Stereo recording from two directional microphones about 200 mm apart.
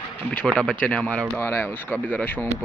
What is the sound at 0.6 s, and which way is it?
Speech, centre (ahead or behind).